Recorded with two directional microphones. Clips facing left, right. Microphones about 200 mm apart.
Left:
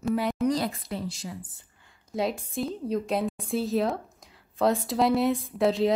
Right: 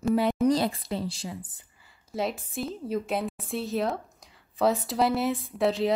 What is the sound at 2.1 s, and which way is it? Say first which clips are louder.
A woman's voice: left 2 dB; centre (ahead or behind).